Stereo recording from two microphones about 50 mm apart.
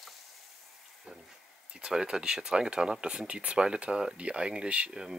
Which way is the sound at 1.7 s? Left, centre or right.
Centre.